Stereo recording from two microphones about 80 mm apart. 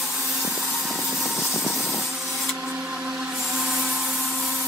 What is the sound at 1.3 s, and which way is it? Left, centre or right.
Vehicle, left.